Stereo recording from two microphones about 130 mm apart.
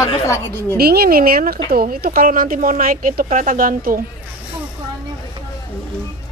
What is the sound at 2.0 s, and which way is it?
Speech, 90° right.